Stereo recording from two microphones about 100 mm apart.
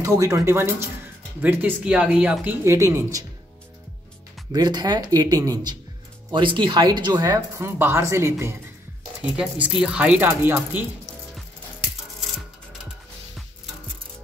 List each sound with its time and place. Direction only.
0.0 s speech: 30° right (ahead or behind); by 2.3 s 10° right (ahead or behind)
2.4 s speech: 25° right (ahead or behind)
4.5 s speech: 45° right (ahead or behind)
6.3 s speech: 55° right (ahead or behind)
7.2 s speech: 30° right (ahead or behind)
9.8 s speech: 10° right (ahead or behind)